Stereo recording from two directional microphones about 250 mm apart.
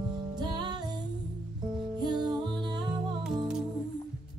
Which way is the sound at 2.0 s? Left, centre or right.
Centre.